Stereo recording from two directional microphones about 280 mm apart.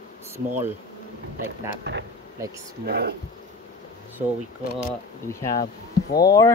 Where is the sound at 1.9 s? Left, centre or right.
Right.